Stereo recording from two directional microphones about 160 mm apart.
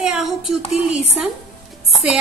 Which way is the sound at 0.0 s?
5° right (ahead or behind).